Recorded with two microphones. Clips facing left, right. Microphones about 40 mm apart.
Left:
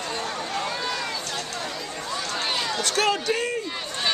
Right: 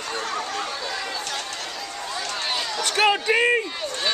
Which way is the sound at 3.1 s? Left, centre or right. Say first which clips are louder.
Right 5 dB; right.